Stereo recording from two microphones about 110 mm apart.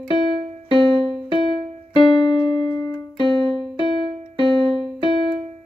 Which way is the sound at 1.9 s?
45° left (ahead or behind).